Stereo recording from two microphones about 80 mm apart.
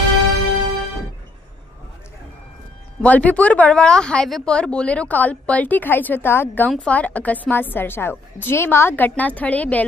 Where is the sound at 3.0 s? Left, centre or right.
Centre.